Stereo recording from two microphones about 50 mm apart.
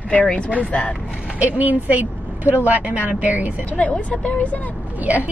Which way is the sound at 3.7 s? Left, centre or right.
Left.